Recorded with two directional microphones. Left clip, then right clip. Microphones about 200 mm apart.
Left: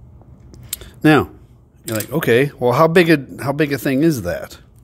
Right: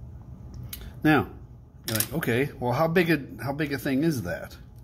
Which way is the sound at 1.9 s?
55° left (ahead or behind).